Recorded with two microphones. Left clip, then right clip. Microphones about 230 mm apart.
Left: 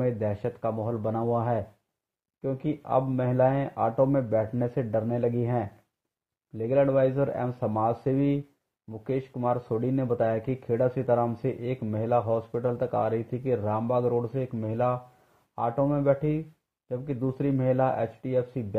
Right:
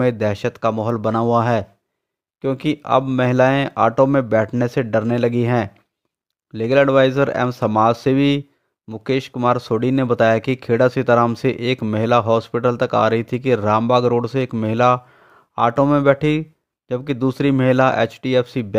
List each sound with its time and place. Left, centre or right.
0.0 s speech: right